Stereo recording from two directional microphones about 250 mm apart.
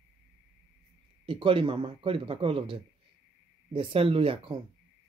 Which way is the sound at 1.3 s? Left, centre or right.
Centre.